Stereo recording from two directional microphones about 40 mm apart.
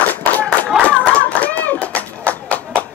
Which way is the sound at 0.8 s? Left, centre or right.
Left.